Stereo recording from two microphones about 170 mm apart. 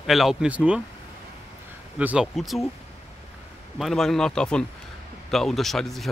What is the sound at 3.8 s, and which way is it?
Speech, centre (ahead or behind).